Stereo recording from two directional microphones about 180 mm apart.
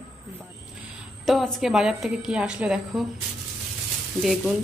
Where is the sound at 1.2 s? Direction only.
Centre (ahead or behind).